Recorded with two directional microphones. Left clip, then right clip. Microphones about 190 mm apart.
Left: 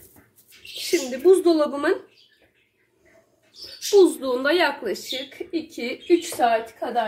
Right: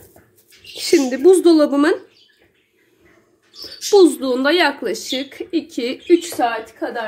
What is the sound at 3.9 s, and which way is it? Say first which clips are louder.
A woman's voice: right 4 dB; 35° right (ahead or behind).